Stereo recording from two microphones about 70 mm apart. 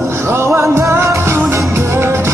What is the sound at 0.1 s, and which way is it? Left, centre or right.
Music, right.